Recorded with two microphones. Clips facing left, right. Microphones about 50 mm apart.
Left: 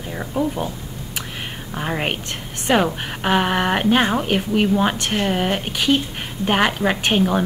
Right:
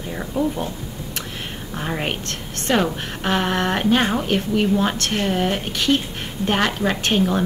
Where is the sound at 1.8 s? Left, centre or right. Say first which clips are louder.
Left 2 dB; centre.